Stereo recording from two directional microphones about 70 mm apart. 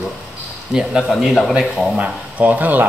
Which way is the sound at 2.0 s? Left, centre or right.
Right.